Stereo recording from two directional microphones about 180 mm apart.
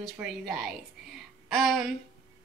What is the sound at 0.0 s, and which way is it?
Speech, centre (ahead or behind).